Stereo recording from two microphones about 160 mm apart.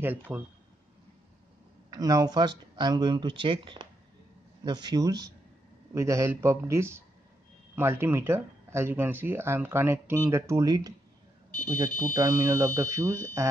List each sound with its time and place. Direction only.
0.0 s speech: 15° right (ahead or behind)
1.9 s speech: 25° right (ahead or behind)